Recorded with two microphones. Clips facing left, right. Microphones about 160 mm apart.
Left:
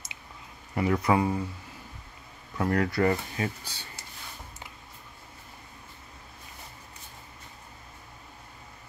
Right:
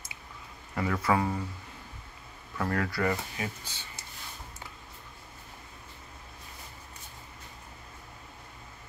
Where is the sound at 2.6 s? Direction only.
20° left (ahead or behind).